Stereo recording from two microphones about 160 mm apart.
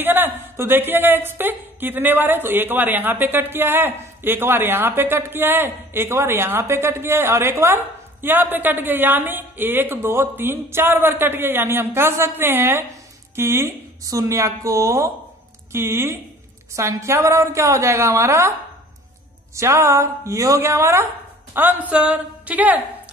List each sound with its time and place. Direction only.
0.0 s a woman's voice: 10° right (ahead or behind)
19.5 s a woman's voice: 15° right (ahead or behind)